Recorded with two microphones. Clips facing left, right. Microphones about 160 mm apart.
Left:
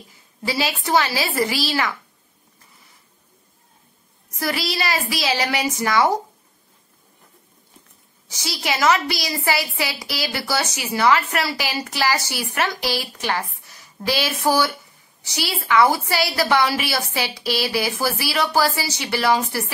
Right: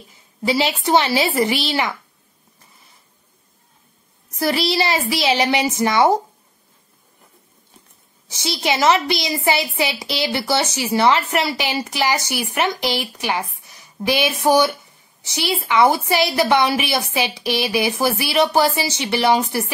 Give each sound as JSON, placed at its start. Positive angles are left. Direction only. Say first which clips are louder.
{"t": 0.5, "sound": "a woman's voice", "louder": "right 4 dB", "side_deg": -25}
{"t": 4.4, "sound": "a woman's voice", "louder": "right 5 dB", "side_deg": -25}
{"t": 8.3, "sound": "a woman's voice", "louder": "right 4 dB", "side_deg": -25}